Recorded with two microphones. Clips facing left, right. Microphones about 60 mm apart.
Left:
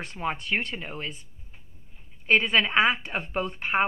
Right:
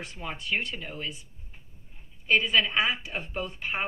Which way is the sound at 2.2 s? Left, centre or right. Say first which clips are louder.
Left 2 dB; left.